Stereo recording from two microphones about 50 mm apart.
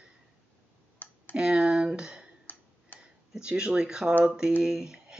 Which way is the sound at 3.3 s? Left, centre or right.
Centre.